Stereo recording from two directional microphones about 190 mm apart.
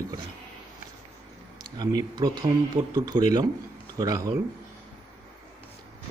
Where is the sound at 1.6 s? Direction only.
20° right (ahead or behind).